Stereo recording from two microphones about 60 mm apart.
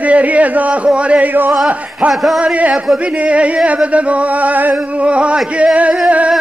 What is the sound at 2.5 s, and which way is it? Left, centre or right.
Speech, right.